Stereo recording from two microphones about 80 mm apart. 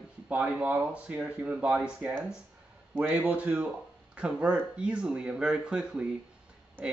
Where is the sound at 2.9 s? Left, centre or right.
Right.